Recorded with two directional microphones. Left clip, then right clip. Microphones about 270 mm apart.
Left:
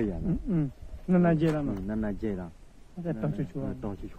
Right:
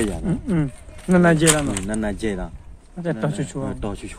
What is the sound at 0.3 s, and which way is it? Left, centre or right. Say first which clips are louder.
Speech: right 7 dB; centre.